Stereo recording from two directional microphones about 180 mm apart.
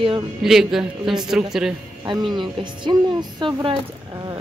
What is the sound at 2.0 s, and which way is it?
Speech, 25° right (ahead or behind).